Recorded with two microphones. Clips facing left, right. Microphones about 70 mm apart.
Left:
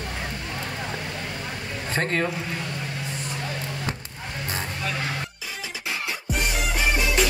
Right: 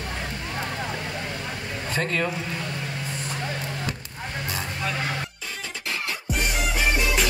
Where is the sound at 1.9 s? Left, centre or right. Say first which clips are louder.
Left 1 dB; left.